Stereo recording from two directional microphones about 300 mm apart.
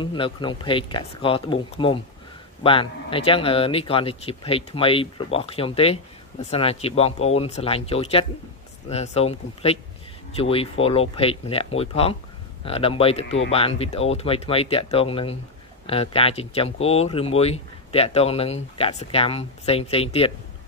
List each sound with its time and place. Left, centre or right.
0.0 s speech: centre